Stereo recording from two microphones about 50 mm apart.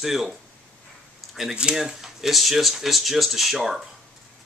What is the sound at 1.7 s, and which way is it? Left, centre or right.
Speech, centre.